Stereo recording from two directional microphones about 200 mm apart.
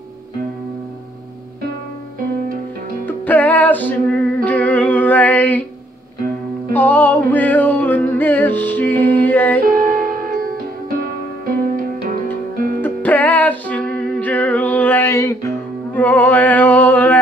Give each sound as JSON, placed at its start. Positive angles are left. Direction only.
{"t": 3.1, "sound": "music", "side_deg": 10}
{"t": 6.7, "sound": "music", "side_deg": 10}
{"t": 9.7, "sound": "music", "side_deg": -45}
{"t": 12.8, "sound": "music", "side_deg": 10}